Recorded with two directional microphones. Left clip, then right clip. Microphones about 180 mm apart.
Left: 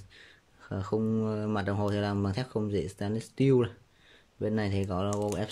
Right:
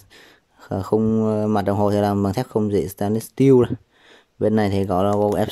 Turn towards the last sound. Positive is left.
turn(degrees=-40)  # may be behind; listen again after turning